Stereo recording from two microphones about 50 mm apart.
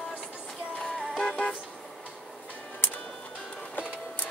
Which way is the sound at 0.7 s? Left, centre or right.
Centre.